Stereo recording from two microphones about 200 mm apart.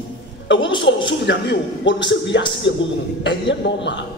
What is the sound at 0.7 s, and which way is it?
A man's voice, 65° left (ahead or behind).